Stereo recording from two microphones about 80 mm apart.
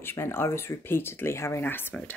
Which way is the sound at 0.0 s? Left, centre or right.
Left.